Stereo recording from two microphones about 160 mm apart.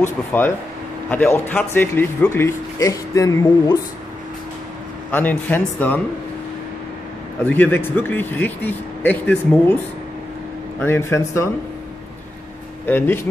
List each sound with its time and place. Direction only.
0.0 s speech: 15° left (ahead or behind)
5.1 s speech: 10° left (ahead or behind)
7.4 s speech: 10° left (ahead or behind)
10.8 s speech: 15° left (ahead or behind)
12.8 s speech: 15° left (ahead or behind)